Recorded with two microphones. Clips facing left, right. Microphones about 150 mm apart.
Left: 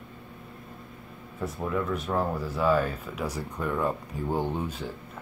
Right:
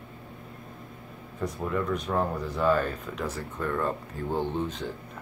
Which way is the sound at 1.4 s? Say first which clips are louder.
Even; centre (ahead or behind).